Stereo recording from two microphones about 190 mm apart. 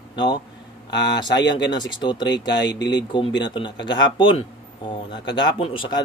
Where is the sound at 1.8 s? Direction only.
25° left (ahead or behind).